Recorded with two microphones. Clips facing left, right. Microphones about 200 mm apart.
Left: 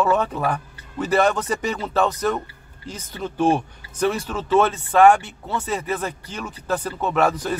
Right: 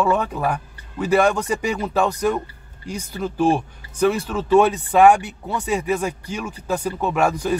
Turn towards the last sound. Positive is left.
turn(degrees=-10)  # may be behind; listen again after turning